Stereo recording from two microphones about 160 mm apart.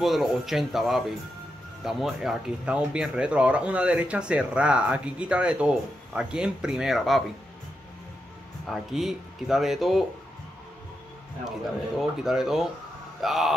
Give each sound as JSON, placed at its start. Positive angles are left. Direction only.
{"t": 0.0, "sound": "speech", "side_deg": 0}
{"t": 8.6, "sound": "speech", "side_deg": 0}
{"t": 12.0, "sound": "speech", "side_deg": -5}